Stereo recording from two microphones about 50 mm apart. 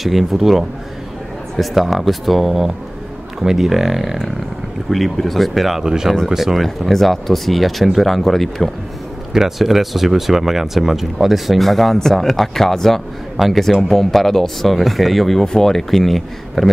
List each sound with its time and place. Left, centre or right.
0.0 s speech: centre